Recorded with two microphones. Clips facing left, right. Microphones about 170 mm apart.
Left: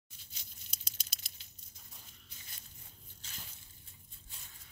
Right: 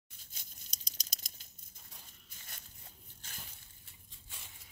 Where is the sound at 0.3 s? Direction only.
45° right (ahead or behind).